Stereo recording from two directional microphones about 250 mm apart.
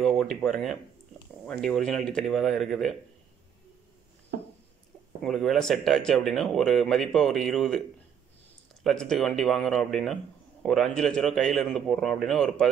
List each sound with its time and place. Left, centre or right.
0.0 s speech: centre
4.3 s a sound: right
5.2 s speech: centre
8.8 s speech: centre